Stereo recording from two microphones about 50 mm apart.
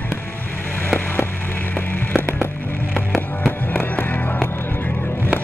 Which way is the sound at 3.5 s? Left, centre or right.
Left.